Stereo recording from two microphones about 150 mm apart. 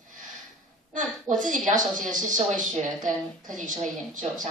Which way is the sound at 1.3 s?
60° right (ahead or behind).